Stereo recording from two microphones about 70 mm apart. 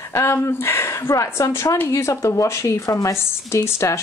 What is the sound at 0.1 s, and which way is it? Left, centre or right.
Speech, left.